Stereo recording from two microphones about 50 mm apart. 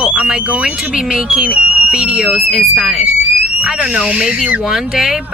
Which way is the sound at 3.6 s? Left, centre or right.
Right.